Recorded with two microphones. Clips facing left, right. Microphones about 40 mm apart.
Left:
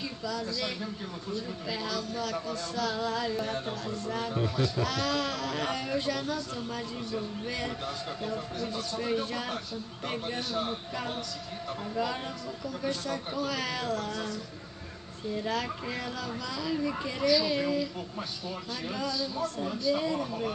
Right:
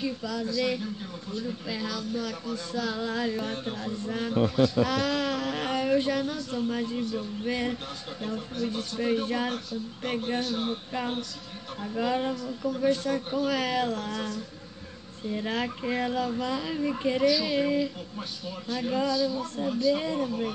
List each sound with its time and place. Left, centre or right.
1.7 s speech: centre
2.7 s speech: centre
3.0 s speech: right
10.3 s a sound: right
12.0 s speech: centre
13.8 s a sound: right
15.3 s speech: right
18.9 s speech: right